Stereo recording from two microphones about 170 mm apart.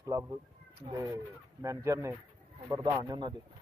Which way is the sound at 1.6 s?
15° right (ahead or behind).